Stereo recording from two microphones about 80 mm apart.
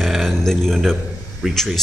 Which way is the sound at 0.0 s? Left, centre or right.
Centre.